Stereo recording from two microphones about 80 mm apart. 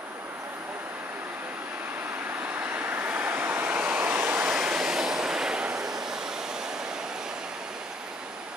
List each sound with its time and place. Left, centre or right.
2.5 s waves: right
4.5 s vehicle: centre